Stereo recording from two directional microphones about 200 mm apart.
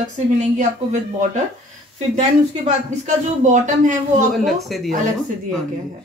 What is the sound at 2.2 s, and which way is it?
Speech, 35° right (ahead or behind).